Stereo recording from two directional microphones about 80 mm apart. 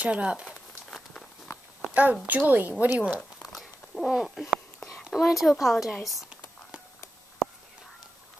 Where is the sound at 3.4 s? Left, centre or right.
Centre.